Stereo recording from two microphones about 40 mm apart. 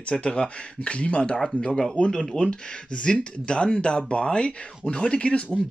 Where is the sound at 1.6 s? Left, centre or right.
Centre.